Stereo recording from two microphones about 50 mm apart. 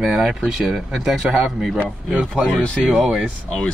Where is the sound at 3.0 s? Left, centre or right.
Centre.